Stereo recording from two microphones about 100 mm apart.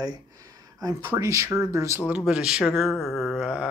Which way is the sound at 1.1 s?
30° right (ahead or behind).